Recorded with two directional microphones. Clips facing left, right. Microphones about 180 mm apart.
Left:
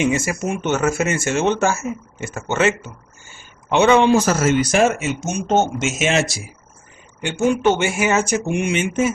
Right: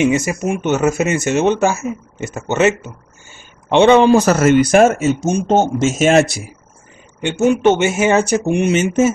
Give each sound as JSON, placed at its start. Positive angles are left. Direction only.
{"t": 0.0, "sound": "speech", "side_deg": -20}
{"t": 4.3, "sound": "speech", "side_deg": -65}
{"t": 7.2, "sound": "speech", "side_deg": -20}